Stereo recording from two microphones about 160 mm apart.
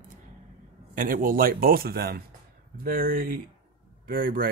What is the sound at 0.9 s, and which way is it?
Speech, 60° right (ahead or behind).